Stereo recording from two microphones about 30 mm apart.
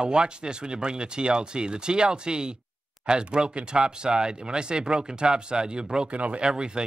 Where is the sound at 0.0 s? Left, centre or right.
Right.